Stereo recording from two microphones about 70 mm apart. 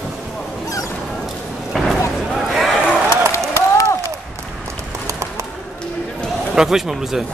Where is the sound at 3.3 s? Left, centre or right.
Left.